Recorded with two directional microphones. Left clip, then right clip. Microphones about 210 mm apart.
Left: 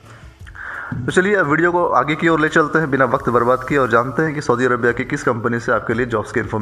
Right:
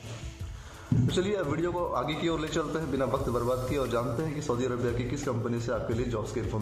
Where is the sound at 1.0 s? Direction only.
25° left (ahead or behind).